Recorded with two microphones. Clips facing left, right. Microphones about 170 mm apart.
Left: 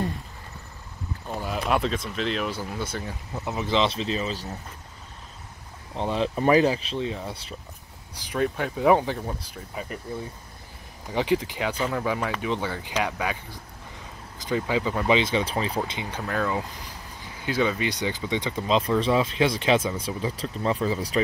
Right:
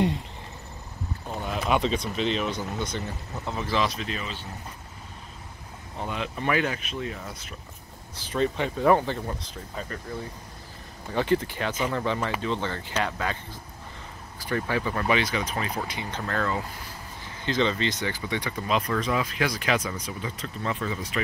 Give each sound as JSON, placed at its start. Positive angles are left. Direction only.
{"t": 1.4, "sound": "speech", "side_deg": 0}
{"t": 3.4, "sound": "speech", "side_deg": 20}
{"t": 5.9, "sound": "speech", "side_deg": 30}
{"t": 8.1, "sound": "speech", "side_deg": 15}
{"t": 11.1, "sound": "speech", "side_deg": 15}
{"t": 16.1, "sound": "speech", "side_deg": 10}